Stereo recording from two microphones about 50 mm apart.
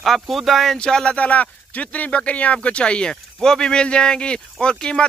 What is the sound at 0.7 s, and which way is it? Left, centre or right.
Speech, centre.